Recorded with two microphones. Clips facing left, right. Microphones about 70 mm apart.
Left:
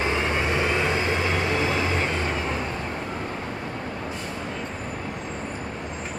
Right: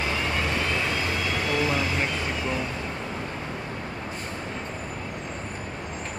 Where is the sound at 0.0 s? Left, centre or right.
Left.